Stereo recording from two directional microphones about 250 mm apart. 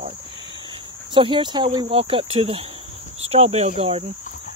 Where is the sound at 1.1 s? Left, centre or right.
Centre.